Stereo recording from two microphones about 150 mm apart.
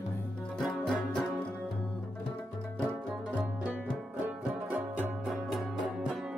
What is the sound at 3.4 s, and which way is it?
Music, 10° right (ahead or behind).